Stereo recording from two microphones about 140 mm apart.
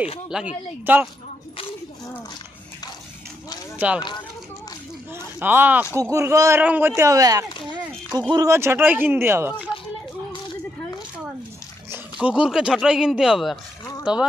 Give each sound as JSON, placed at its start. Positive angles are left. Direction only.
{"t": 0.3, "sound": "speech", "side_deg": -5}
{"t": 3.7, "sound": "speech", "side_deg": -10}
{"t": 5.4, "sound": "speech", "side_deg": -15}
{"t": 7.0, "sound": "speech", "side_deg": -25}
{"t": 11.9, "sound": "speech", "side_deg": -10}